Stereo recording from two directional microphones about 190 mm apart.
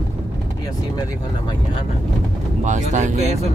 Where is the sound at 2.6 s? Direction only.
40° right (ahead or behind).